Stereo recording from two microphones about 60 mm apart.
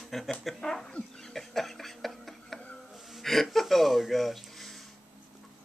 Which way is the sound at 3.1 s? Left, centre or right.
Centre.